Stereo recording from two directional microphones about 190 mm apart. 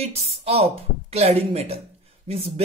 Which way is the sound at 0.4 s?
30° right (ahead or behind).